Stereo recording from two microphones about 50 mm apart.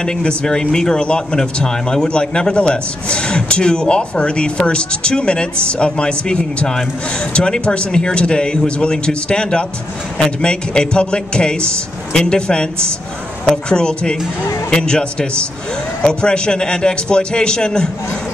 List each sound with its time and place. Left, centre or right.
0.0 s a man's voice: left